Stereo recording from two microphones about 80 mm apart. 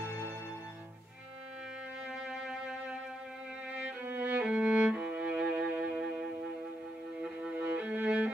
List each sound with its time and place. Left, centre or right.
2.1 s music: centre
7.5 s violin: right